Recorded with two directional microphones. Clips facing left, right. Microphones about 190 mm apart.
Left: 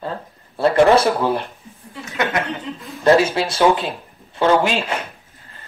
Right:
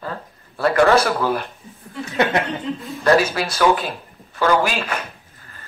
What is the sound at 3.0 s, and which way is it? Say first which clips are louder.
Speech: left 3 dB; 25° left (ahead or behind).